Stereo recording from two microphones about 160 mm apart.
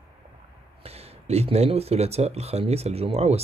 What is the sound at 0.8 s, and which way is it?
Speech, 40° right (ahead or behind).